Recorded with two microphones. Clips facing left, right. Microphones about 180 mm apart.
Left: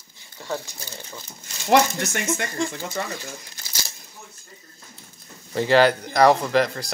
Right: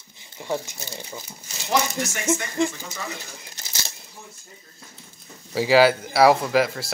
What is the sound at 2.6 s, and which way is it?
Speech, 20° right (ahead or behind).